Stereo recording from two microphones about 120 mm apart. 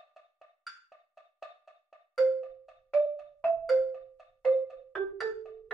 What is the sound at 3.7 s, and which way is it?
Marimba, centre (ahead or behind).